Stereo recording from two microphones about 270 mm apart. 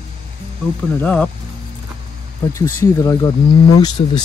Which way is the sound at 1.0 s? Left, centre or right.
Centre.